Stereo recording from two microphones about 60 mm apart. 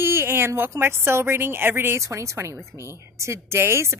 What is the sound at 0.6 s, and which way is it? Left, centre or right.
Speech, right.